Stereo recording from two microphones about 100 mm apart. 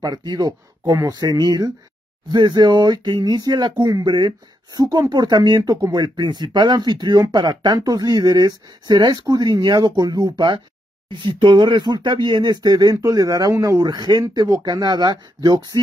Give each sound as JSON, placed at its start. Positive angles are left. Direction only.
{"t": 0.0, "sound": "speech", "side_deg": -45}
{"t": 11.1, "sound": "speech", "side_deg": -55}